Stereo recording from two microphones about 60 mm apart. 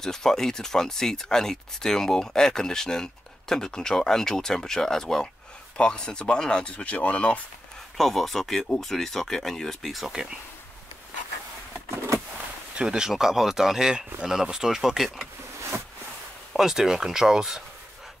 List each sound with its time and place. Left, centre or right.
0.0 s speech: centre
8.0 s speech: centre
12.7 s speech: centre
16.5 s speech: centre